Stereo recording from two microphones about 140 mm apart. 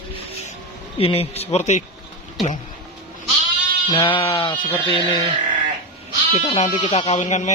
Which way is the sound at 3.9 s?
40° left (ahead or behind).